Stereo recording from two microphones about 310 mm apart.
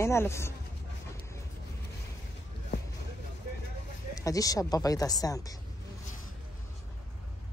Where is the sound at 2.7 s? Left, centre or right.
Left.